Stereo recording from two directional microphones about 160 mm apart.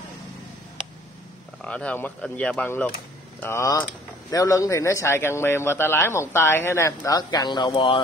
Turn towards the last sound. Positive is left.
turn(degrees=35)  # may be behind; listen again after turning